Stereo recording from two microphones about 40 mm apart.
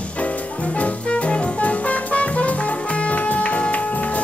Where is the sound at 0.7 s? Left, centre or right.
Left.